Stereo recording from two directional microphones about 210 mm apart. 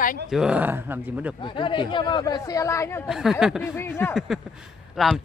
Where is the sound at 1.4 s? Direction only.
25° left (ahead or behind).